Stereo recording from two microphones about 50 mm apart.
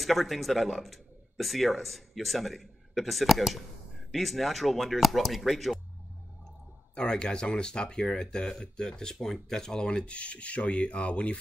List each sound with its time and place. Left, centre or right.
0.0 s speech: centre
7.0 s speech: centre